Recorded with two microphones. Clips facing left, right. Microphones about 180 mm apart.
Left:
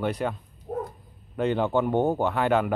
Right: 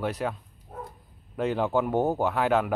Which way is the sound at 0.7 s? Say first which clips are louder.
Left 10 dB; 50° left (ahead or behind).